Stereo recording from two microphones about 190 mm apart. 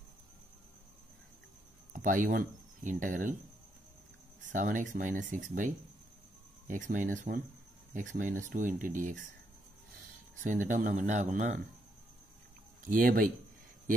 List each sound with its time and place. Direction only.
2.0 s speech: 45° right (ahead or behind)
4.5 s speech: 45° right (ahead or behind)
10.4 s speech: 45° right (ahead or behind)
12.8 s speech: 45° right (ahead or behind)